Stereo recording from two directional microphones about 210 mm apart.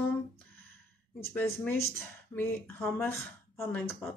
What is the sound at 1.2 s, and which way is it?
Speech, 5° left (ahead or behind).